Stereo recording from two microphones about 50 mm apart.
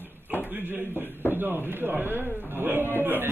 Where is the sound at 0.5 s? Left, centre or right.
Right.